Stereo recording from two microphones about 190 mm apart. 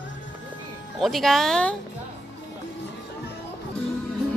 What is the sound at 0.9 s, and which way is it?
Speech, centre (ahead or behind).